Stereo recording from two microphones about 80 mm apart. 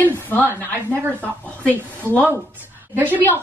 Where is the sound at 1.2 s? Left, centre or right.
Centre.